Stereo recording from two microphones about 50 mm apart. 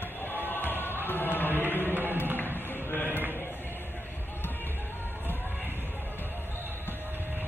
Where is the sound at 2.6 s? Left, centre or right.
Left.